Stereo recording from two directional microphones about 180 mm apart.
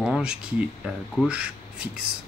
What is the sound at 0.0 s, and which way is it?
Speech, 5° right (ahead or behind).